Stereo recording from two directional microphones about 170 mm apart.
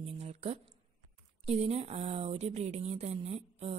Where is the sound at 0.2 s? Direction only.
40° right (ahead or behind).